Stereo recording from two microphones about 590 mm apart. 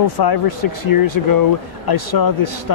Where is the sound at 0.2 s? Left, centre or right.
Left.